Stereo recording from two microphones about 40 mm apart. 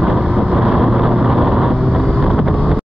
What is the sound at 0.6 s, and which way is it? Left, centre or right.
Vehicle, centre.